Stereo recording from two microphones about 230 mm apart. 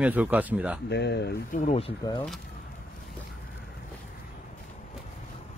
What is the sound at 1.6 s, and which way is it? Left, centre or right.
Speech, left.